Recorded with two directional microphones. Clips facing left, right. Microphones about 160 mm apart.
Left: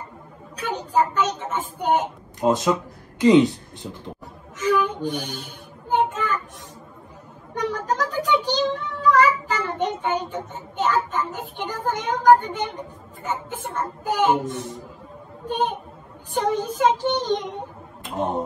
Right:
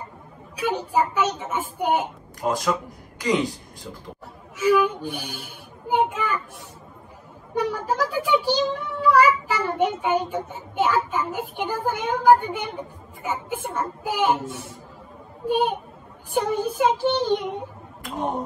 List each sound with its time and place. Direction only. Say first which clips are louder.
0.6 s a woman's voice: even; 10° right (ahead or behind)
2.4 s speech: left 4 dB; 25° left (ahead or behind)
4.6 s a sound: right 2 dB; 10° right (ahead or behind)
7.5 s a child's voice: right 1 dB; 10° right (ahead or behind)